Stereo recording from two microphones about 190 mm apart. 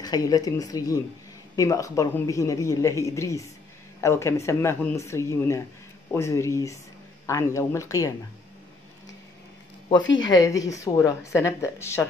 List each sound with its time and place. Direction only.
0.0 s a woman's voice: 20° left (ahead or behind)
10.2 s a woman's voice: 20° left (ahead or behind)